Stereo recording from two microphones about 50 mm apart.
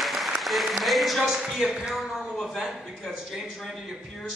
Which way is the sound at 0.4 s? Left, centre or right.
Centre.